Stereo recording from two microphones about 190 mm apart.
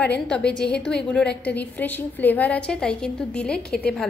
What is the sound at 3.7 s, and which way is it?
Speech, 55° left (ahead or behind).